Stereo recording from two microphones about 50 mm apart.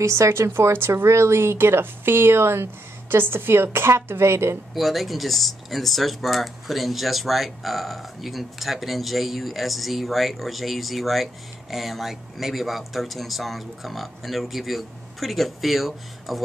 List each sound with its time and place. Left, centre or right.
0.0 s speech: right
4.7 s speech: centre